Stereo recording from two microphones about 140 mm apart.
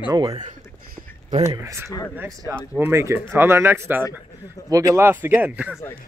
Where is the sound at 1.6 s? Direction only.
20° right (ahead or behind).